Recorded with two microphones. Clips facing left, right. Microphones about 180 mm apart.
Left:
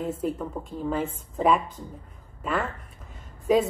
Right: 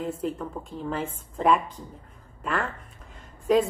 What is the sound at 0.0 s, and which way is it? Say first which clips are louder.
A woman's voice: left 1 dB; 5° left (ahead or behind).